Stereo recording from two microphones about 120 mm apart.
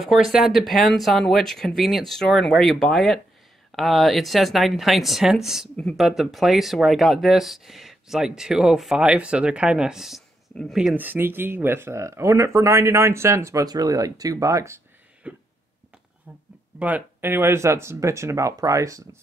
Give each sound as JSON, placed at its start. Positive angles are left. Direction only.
{"t": 0.0, "sound": "speech", "side_deg": 0}
{"t": 11.0, "sound": "speech", "side_deg": -15}
{"t": 15.2, "sound": "cough", "side_deg": -10}
{"t": 16.3, "sound": "a sound", "side_deg": -15}
{"t": 16.8, "sound": "speech", "side_deg": -15}